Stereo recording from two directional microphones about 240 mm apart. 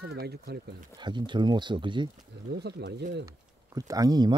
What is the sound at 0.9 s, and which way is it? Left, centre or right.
Speech, centre.